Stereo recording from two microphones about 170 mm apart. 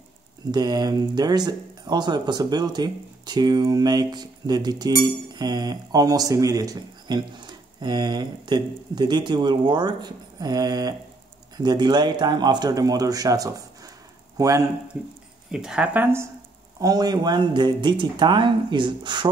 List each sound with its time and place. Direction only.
0.5 s speech: 25° right (ahead or behind)
14.3 s a sound: 20° right (ahead or behind)
15.5 s speech: 5° right (ahead or behind)
16.8 s speech: 25° right (ahead or behind)